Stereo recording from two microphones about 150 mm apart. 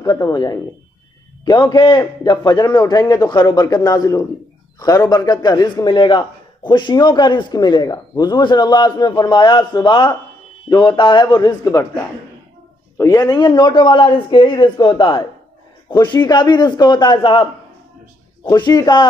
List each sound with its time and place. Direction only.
0.0 s a man's voice: 25° left (ahead or behind)
12.9 s a man's voice: 20° left (ahead or behind)